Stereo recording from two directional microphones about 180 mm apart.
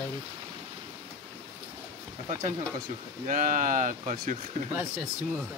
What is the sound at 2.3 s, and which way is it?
Speech, 40° right (ahead or behind).